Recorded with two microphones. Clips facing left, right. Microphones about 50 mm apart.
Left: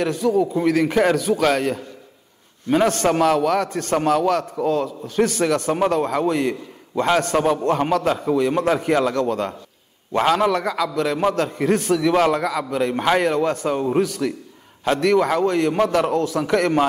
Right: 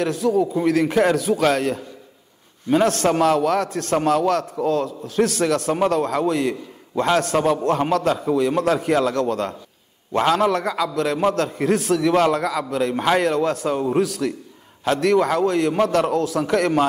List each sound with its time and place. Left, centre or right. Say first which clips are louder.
0.0 s a man's voice: even; centre